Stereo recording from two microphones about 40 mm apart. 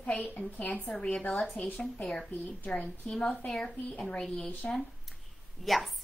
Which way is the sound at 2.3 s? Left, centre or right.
Left.